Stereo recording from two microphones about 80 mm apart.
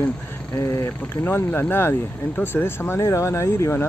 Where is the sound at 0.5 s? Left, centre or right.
Left.